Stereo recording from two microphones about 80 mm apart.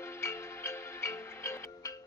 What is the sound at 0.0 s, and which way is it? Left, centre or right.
Music, left.